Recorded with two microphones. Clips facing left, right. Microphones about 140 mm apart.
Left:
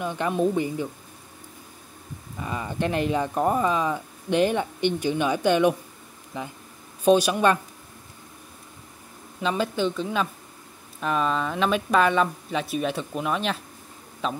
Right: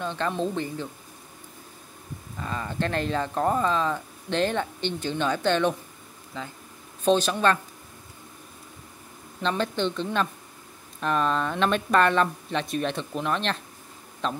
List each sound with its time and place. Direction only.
0.0 s speech: 15° left (ahead or behind)
2.3 s speech: 10° left (ahead or behind)
9.4 s speech: 5° left (ahead or behind)